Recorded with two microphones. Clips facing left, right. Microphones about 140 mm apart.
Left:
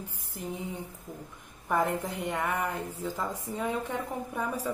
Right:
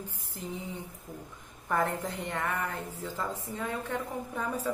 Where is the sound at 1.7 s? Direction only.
10° left (ahead or behind).